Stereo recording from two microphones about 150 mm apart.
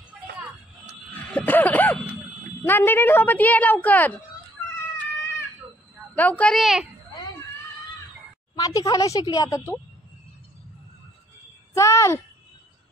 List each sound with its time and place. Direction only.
1.3 s a sound: 10° left (ahead or behind)
2.6 s speech: 15° left (ahead or behind)
6.1 s a woman's voice: 10° left (ahead or behind)
8.5 s a woman's voice: 25° left (ahead or behind)
11.7 s a woman's voice: 20° left (ahead or behind)